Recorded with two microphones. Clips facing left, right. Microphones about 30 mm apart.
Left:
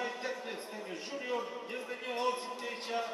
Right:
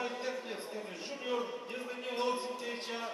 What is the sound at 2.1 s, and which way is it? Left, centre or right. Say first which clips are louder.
Speech: even; centre.